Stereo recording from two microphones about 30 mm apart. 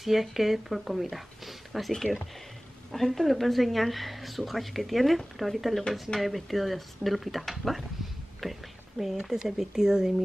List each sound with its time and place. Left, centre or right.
0.0 s speech: centre
9.0 s speech: centre
9.3 s speech: centre